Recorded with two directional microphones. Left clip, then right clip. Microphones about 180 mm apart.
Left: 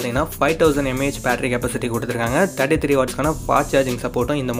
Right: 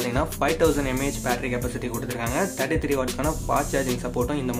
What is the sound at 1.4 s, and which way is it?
Speech, 40° left (ahead or behind).